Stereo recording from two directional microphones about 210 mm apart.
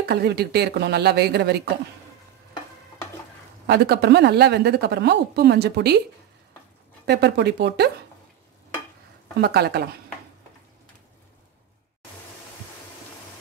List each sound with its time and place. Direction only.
0.0 s a woman's voice: 50° right (ahead or behind)
3.6 s a woman's voice: 50° right (ahead or behind)
7.1 s a woman's voice: 50° right (ahead or behind)
9.4 s a woman's voice: 50° right (ahead or behind)